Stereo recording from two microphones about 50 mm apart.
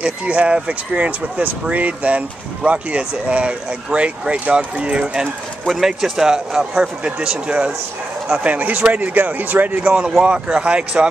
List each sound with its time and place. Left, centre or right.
0.0 s speech: right
5.7 s speech: centre; by 7.7 s right
8.5 s speech: right
9.8 s speech: centre